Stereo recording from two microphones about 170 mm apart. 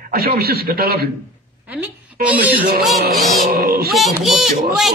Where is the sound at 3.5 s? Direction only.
65° right (ahead or behind).